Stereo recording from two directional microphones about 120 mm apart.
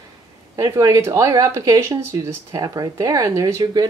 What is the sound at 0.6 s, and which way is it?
Speech, 30° right (ahead or behind).